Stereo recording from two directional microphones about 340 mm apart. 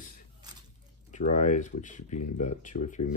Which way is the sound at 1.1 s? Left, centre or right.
Left.